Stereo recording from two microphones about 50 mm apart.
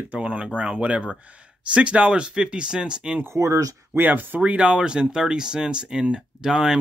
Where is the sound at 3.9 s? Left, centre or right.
Right; by 6.7 s centre.